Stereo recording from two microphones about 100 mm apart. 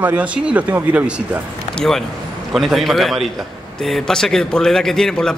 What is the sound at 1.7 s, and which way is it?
A man's voice, 5° left (ahead or behind).